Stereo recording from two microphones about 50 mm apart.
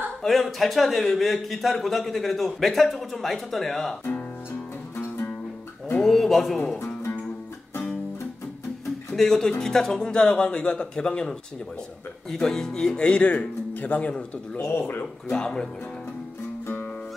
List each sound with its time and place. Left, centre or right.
0.2 s a man's voice: centre
6.0 s a man's voice: centre
9.1 s speech: centre
13.2 s speech: left
14.1 s speech: centre
14.7 s speech: left
15.2 s speech: centre
16.6 s music: left